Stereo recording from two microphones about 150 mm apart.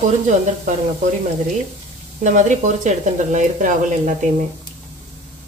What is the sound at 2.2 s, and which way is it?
Speech, 55° right (ahead or behind).